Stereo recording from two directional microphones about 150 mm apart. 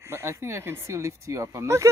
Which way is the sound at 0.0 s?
20° right (ahead or behind).